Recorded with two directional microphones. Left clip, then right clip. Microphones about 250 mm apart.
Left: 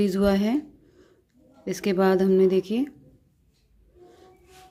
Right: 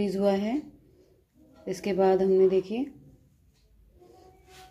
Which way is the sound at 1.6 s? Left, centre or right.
Left.